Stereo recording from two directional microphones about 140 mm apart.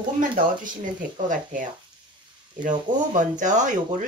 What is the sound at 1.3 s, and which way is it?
Speech, 70° right (ahead or behind).